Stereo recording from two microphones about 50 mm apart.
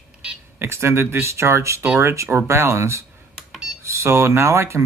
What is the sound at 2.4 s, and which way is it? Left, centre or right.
Speech, right.